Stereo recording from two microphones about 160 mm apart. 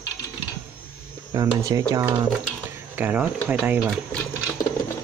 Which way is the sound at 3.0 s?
10° right (ahead or behind).